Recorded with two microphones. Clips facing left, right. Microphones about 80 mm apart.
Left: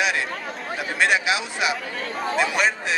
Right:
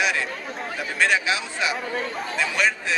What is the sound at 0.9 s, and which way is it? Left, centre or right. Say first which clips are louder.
Speech: left 1 dB; centre.